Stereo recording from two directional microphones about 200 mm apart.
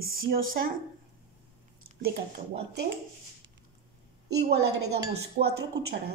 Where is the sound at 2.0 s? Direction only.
50° right (ahead or behind).